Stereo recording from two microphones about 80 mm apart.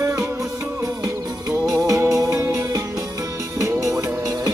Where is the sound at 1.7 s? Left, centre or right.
Right.